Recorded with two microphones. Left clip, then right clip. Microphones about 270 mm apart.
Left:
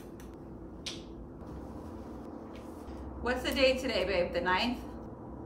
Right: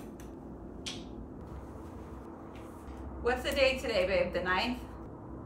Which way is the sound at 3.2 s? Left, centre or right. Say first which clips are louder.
Even; centre.